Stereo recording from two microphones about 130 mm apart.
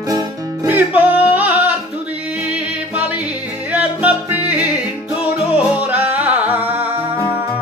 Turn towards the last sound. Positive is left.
turn(degrees=-10)  # may be behind; listen again after turning